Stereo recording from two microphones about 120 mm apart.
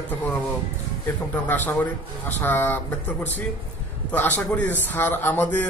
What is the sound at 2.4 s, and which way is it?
Speech, 15° left (ahead or behind).